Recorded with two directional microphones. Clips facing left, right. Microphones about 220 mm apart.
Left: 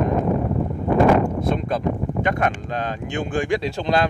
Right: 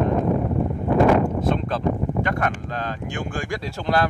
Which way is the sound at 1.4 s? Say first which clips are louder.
Even; 15° left (ahead or behind).